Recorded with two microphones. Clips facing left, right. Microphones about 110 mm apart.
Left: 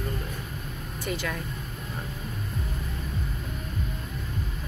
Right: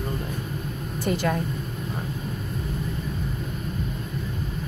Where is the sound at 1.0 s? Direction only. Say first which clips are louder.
Right 7 dB; 35° right (ahead or behind).